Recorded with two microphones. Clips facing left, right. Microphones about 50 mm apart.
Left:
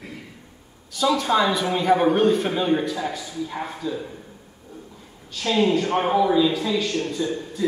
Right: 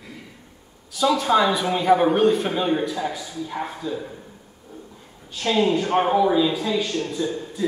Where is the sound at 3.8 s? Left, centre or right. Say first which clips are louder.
Even; right.